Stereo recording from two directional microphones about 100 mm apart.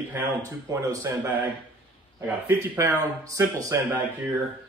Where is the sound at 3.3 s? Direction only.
30° right (ahead or behind).